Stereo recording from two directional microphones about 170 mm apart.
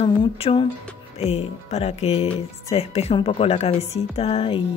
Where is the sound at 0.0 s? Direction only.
30° left (ahead or behind).